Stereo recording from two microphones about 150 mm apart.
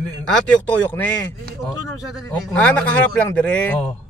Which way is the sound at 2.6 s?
10° left (ahead or behind).